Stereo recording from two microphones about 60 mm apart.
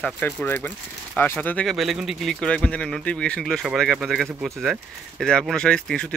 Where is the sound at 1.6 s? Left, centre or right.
Centre.